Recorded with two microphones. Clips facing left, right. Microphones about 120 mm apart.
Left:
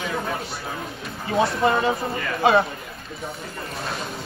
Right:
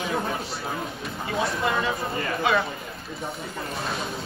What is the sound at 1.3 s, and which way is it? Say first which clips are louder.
Speech: left 6 dB; 30° left (ahead or behind).